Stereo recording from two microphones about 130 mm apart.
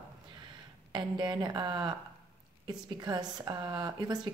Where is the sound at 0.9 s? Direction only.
35° right (ahead or behind).